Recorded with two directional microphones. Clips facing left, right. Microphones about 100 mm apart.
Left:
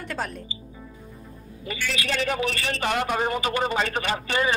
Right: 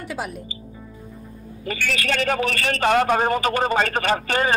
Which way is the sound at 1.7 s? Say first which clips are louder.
Right 4 dB; 50° right (ahead or behind).